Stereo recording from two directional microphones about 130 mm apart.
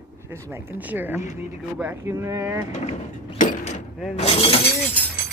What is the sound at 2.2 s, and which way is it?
Speech, 20° right (ahead or behind).